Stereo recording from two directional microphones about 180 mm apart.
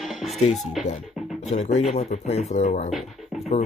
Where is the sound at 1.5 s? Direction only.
40° left (ahead or behind).